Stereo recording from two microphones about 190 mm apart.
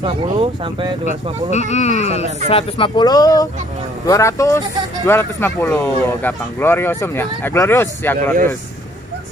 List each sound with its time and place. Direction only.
0.0 s speech: 25° right (ahead or behind)
1.0 s speech: 35° left (ahead or behind)
2.5 s speech: 25° left (ahead or behind)